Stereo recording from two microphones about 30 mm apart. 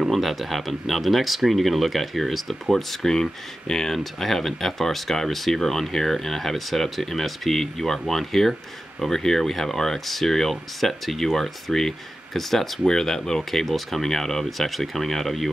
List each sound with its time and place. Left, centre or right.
0.1 s speech: centre
12.8 s speech: centre